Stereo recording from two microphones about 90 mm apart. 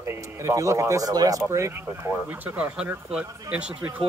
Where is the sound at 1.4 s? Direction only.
35° right (ahead or behind).